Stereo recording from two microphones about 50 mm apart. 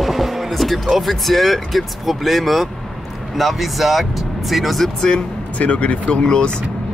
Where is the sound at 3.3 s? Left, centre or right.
Centre.